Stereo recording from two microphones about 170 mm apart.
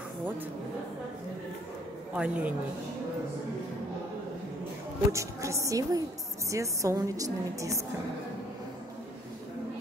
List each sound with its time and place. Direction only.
2.1 s a woman's voice: 5° right (ahead or behind)
5.1 s a woman's voice: 15° right (ahead or behind)